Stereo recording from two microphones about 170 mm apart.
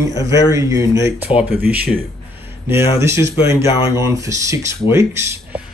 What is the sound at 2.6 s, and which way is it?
Speech, 15° right (ahead or behind).